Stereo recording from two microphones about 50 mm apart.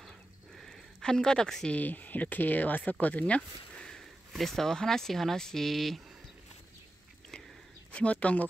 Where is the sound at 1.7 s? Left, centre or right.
Left; by 4.0 s centre.